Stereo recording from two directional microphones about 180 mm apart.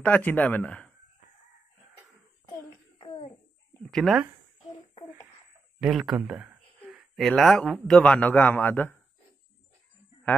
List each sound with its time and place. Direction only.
0.0 s speech: 10° left (ahead or behind)
2.4 s a sound: 25° left (ahead or behind)
3.8 s speech: centre (ahead or behind)
5.8 s speech: centre (ahead or behind)